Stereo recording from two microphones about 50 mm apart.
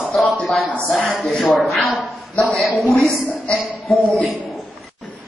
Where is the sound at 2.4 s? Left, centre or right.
Left.